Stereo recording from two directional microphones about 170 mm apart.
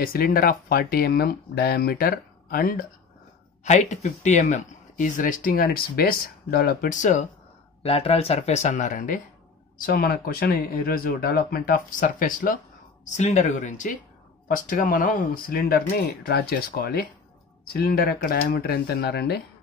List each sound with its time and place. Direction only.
0.0 s speech: 60° left (ahead or behind)
3.6 s speech: 45° left (ahead or behind)
7.8 s speech: 35° left (ahead or behind); by 19.4 s 75° left (ahead or behind)